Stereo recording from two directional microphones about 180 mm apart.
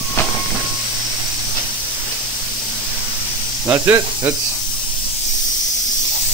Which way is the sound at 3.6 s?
15° right (ahead or behind).